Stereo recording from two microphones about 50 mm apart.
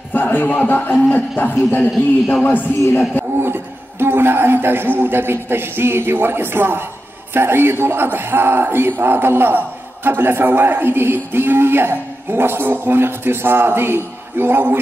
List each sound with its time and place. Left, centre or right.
0.1 s music: left
1.1 s a man's voice: left
3.3 s a man's voice: right